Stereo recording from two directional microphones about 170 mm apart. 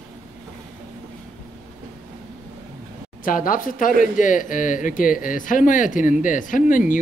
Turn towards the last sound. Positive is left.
turn(degrees=50)  # may be behind; listen again after turning